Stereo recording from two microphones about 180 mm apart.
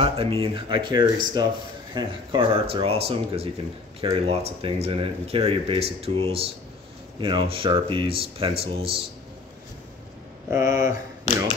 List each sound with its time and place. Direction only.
0.0 s speech: 30° right (ahead or behind)
10.5 s speech: 20° right (ahead or behind)